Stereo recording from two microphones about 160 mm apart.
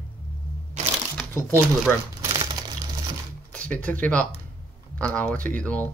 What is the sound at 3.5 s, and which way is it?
Speech, 10° left (ahead or behind).